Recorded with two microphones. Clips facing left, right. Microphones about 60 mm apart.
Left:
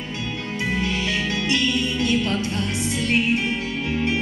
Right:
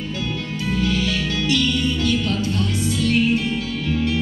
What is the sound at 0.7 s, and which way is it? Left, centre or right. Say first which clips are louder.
Music: right 5 dB; left.